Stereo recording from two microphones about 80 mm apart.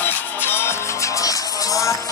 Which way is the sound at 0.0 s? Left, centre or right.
Left.